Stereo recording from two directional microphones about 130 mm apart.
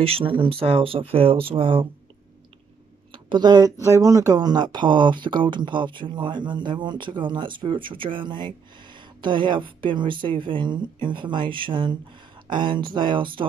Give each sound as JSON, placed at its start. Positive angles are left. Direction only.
{"t": 0.0, "sound": "speech", "side_deg": -45}
{"t": 3.1, "sound": "a sound", "side_deg": -35}
{"t": 3.8, "sound": "speech", "side_deg": -25}